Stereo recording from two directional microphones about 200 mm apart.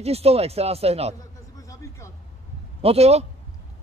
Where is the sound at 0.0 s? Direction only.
30° right (ahead or behind).